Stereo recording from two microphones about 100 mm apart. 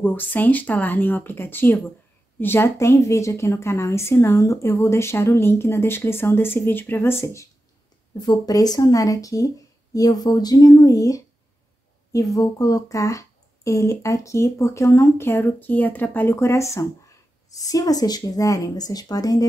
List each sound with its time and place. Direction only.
0.0 s a woman's voice: 15° left (ahead or behind)
8.2 s a woman's voice: 45° left (ahead or behind)